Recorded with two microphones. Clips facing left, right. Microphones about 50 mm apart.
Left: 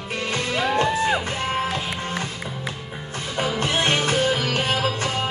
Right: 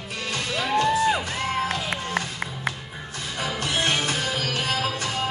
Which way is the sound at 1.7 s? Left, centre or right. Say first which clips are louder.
Left 1 dB; right.